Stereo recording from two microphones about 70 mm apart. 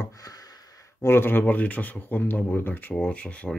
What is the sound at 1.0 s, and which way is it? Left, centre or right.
Speech, left.